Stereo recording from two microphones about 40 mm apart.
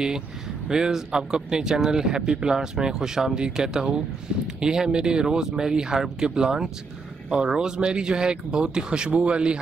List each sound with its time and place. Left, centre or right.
0.7 s speech: centre